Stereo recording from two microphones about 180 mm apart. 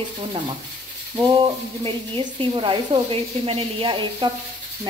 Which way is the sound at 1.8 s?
30° right (ahead or behind).